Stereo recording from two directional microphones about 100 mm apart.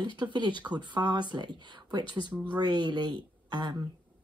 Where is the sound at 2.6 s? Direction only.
45° right (ahead or behind).